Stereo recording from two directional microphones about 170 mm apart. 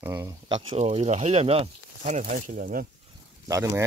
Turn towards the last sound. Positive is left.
turn(degrees=-20)  # may be behind; listen again after turning